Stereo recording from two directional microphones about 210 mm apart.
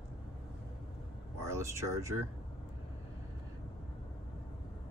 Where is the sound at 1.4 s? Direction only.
15° right (ahead or behind).